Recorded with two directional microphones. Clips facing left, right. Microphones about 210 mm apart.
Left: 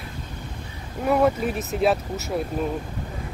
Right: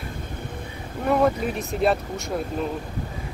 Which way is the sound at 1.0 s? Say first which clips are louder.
Left 1 dB; 5° left (ahead or behind).